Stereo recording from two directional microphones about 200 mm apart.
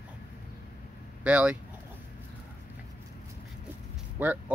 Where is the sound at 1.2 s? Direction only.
5° right (ahead or behind).